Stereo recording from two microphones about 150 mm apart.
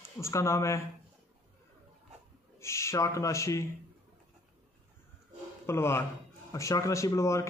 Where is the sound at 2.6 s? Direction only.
20° left (ahead or behind).